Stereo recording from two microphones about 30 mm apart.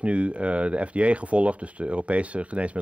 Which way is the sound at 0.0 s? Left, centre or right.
Right.